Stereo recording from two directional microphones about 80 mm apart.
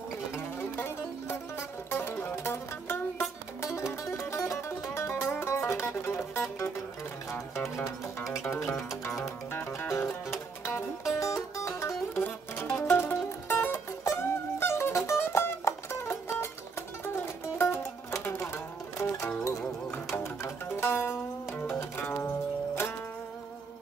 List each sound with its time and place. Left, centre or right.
0.3 s music: left
7.7 s music: left
11.1 s music: left
12.1 s music: left
17.6 s music: left